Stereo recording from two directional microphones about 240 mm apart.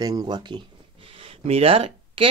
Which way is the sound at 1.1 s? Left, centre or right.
Right.